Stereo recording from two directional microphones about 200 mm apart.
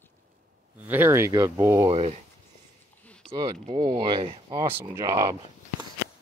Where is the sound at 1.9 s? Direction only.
30° right (ahead or behind).